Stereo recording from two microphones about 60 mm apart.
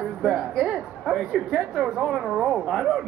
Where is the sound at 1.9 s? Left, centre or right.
Centre.